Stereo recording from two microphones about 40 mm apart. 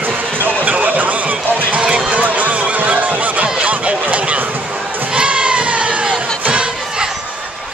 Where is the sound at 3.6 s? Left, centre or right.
Right.